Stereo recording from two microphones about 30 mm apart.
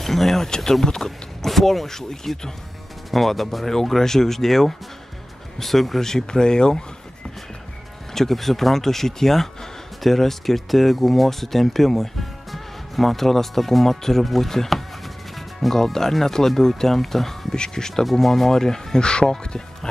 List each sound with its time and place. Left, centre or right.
0.0 s speech: centre
1.9 s speech: centre
3.1 s speech: centre
5.9 s speech: centre
8.1 s speech: centre
14.7 s a sound: centre
15.7 s speech: centre
17.5 s speech: left
18.1 s speech: centre; by 19.9 s left